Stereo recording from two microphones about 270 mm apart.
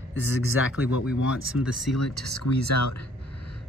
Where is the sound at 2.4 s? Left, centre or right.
Left.